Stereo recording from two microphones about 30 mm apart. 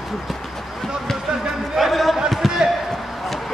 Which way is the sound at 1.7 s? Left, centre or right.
Centre.